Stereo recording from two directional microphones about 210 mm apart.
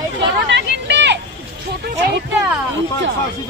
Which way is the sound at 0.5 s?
55° right (ahead or behind).